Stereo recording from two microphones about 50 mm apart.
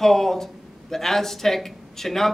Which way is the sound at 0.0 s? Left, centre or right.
Centre.